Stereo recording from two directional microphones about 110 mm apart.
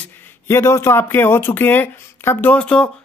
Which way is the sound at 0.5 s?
25° left (ahead or behind).